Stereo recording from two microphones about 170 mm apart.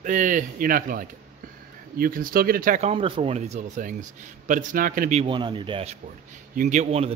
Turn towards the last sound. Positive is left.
turn(degrees=-40)  # may be behind; listen again after turning